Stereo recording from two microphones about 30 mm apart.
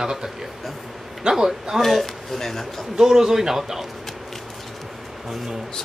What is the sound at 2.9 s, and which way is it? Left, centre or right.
Speech, centre.